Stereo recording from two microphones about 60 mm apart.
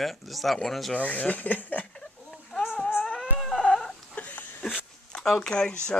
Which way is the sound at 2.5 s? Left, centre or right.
Centre.